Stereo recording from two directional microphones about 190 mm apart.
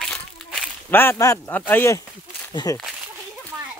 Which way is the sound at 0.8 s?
10° left (ahead or behind).